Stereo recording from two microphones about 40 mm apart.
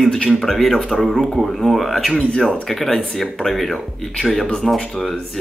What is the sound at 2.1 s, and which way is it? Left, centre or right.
Speech, centre.